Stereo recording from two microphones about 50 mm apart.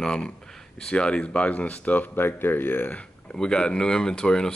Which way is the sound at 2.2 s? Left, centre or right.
Left.